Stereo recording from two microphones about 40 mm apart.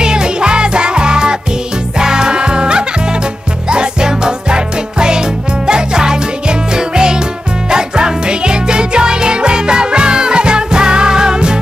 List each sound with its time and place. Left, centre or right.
0.0 s music: centre